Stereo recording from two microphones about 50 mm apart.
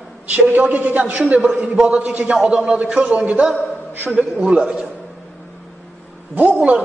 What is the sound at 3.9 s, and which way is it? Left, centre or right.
Speech, right.